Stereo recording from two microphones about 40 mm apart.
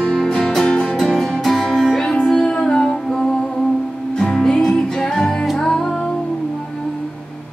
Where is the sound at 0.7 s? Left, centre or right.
Left.